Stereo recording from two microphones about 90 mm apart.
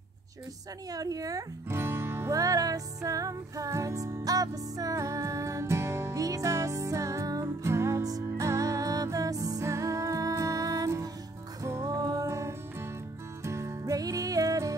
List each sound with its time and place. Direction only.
0.9 s a woman's voice: 40° right (ahead or behind)
1.7 s music: 30° right (ahead or behind)